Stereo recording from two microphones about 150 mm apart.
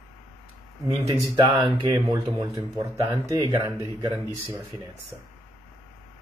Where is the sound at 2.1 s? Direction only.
25° right (ahead or behind).